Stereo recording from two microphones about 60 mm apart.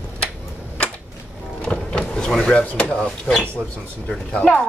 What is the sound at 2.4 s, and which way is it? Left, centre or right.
Speech, centre.